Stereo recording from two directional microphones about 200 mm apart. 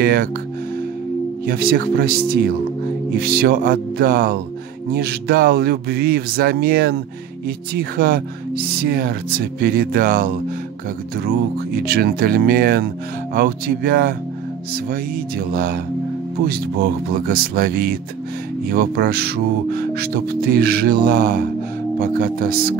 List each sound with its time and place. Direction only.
0.0 s speech: 50° right (ahead or behind)
1.4 s speech: 50° right (ahead or behind)